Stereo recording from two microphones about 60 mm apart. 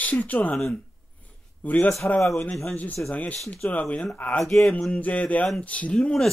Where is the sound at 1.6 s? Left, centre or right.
Left.